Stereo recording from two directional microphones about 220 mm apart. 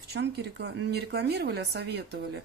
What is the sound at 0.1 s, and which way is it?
Speech, 50° right (ahead or behind).